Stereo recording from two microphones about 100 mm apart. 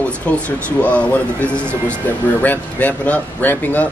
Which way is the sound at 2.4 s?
15° left (ahead or behind).